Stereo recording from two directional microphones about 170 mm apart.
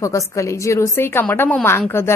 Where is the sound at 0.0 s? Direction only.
20° left (ahead or behind).